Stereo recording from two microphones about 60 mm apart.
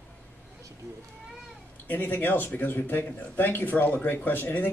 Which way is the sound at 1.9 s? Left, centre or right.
Left.